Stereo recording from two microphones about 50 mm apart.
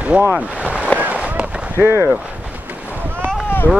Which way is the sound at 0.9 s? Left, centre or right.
Right.